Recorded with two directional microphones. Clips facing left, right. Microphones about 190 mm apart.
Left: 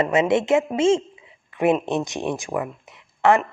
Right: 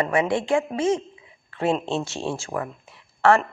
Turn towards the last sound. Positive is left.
turn(degrees=15)  # may be behind; listen again after turning